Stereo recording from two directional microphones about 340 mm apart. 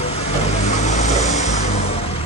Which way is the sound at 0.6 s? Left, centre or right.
Left.